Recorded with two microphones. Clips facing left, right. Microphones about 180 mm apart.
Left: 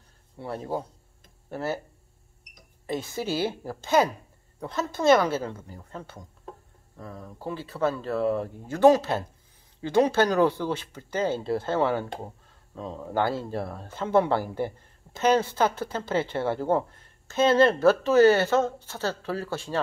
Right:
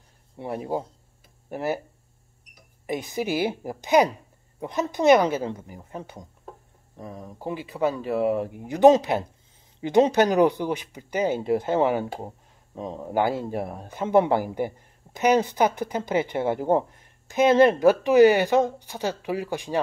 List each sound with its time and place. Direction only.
0.4 s speech: 15° right (ahead or behind)